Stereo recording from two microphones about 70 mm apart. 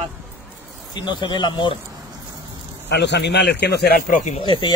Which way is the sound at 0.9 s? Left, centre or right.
Left.